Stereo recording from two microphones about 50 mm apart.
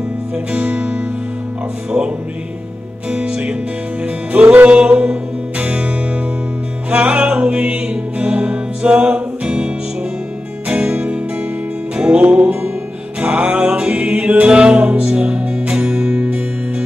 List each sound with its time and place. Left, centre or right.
0.5 s music: right
10.7 s music: right